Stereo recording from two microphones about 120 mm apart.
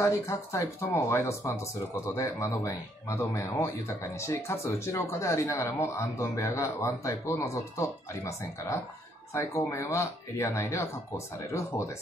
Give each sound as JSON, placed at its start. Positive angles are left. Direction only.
{"t": 0.0, "sound": "speech", "side_deg": 25}